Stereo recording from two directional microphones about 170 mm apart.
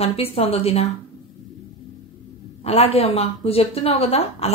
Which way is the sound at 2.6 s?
35° left (ahead or behind).